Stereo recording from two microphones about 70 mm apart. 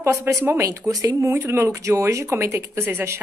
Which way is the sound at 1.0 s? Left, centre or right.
Right.